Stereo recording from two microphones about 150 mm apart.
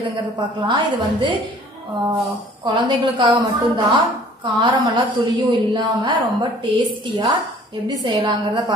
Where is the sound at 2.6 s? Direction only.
30° right (ahead or behind).